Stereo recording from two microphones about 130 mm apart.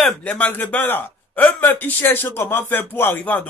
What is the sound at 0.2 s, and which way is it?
A man's voice, 10° left (ahead or behind).